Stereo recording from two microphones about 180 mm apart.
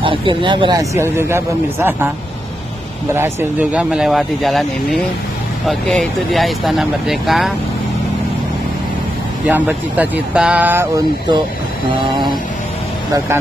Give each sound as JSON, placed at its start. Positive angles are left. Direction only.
{"t": 0.0, "sound": "speech", "side_deg": -30}
{"t": 3.2, "sound": "speech", "side_deg": -10}
{"t": 5.7, "sound": "speech", "side_deg": 0}
{"t": 9.5, "sound": "speech", "side_deg": -10}